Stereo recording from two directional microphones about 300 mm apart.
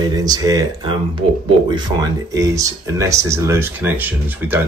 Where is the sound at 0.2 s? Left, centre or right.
Centre.